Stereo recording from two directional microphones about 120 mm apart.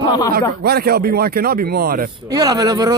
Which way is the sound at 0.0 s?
40° left (ahead or behind).